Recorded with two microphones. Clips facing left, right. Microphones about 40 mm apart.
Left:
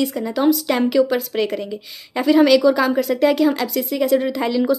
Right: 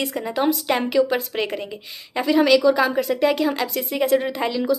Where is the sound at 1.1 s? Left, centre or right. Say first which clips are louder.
Left 3 dB; right.